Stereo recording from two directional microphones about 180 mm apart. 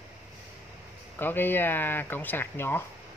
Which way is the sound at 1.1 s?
10° left (ahead or behind).